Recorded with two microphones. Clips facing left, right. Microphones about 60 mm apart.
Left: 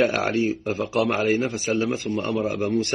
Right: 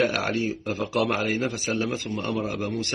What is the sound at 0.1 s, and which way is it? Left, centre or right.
Speech, left.